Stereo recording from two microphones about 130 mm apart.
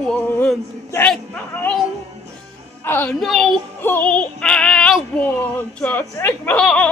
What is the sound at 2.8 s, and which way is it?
Speech, 15° left (ahead or behind).